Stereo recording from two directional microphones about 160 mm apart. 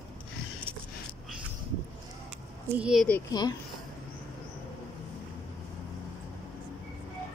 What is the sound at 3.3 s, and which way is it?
Speech, 25° left (ahead or behind).